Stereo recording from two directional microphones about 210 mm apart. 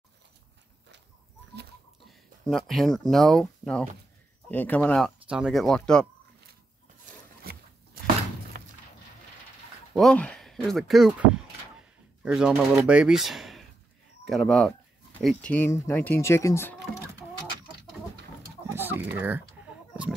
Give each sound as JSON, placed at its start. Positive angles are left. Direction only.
{"t": 2.0, "sound": "speech", "side_deg": 0}
{"t": 8.5, "sound": "a sound", "side_deg": -40}
{"t": 9.9, "sound": "speech", "side_deg": 5}
{"t": 12.3, "sound": "speech", "side_deg": -5}
{"t": 18.8, "sound": "chicken", "side_deg": -10}
{"t": 19.1, "sound": "speech", "side_deg": -10}